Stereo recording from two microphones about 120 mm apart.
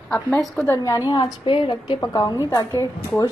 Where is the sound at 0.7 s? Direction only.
25° left (ahead or behind); by 2.0 s 45° left (ahead or behind).